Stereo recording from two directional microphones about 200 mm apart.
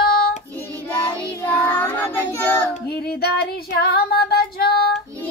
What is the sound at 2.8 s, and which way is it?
Female singing, 55° left (ahead or behind).